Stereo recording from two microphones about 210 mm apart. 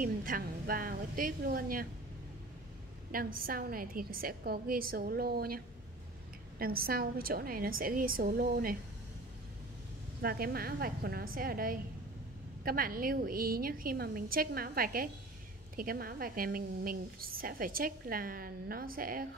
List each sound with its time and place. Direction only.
0.0 s a woman's voice: 40° right (ahead or behind)
3.1 s a woman's voice: 45° right (ahead or behind)
6.6 s a woman's voice: 45° right (ahead or behind)
10.2 s a woman's voice: 45° right (ahead or behind)